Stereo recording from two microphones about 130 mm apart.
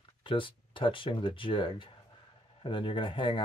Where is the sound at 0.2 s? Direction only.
40° left (ahead or behind).